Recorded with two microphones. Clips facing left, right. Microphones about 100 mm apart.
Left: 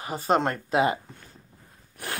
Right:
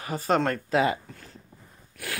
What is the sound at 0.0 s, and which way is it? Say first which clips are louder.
Speech: left 1 dB; 25° left (ahead or behind).